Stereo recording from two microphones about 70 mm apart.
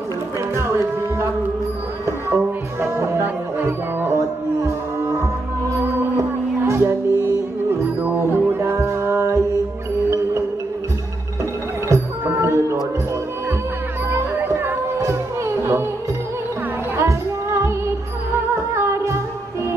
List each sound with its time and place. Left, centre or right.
0.6 s a sound: right
2.0 s music: right
6.6 s music: right
8.0 s music: right
8.5 s music: right
11.9 s music: right
14.1 s music: right
16.9 s music: right
18.8 s music: right